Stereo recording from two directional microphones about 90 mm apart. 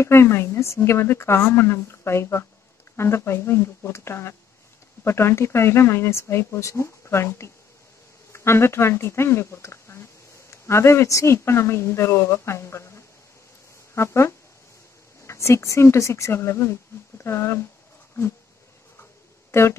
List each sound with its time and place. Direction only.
0.0 s speech: 30° left (ahead or behind)